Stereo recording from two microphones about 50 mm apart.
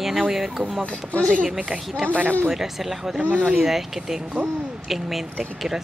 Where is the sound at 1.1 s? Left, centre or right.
Centre.